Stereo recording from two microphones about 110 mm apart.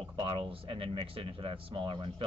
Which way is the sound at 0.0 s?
50° right (ahead or behind).